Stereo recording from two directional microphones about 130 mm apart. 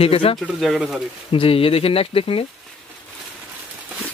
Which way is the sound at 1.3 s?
45° left (ahead or behind).